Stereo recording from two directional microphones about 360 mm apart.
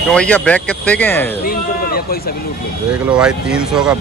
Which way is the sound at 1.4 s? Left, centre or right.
Left.